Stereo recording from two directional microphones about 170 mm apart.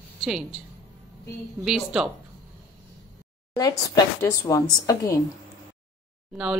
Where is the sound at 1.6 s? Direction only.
5° right (ahead or behind).